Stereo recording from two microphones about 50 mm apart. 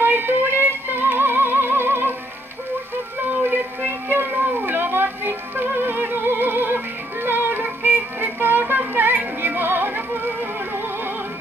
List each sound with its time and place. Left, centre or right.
0.0 s music: right
3.4 s a sound: right
4.3 s music: right